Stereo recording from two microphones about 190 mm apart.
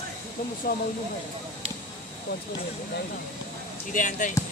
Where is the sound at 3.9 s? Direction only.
40° left (ahead or behind).